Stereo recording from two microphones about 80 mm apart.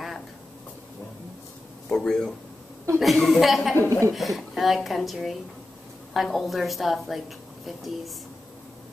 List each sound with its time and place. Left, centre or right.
1.9 s a woman's voice: centre
3.7 s speech: left
4.1 s a woman's voice: centre